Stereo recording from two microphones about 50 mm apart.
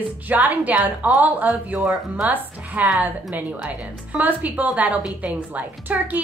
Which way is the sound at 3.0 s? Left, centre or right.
Right.